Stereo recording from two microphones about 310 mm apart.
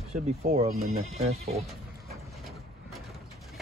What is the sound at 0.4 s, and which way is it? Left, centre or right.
Speech, right.